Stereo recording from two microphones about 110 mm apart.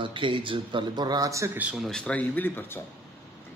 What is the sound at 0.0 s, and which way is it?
A man's voice, 50° right (ahead or behind).